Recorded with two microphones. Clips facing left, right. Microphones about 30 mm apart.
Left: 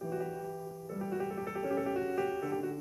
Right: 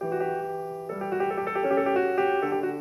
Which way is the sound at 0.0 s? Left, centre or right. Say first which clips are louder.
Right 9 dB; right.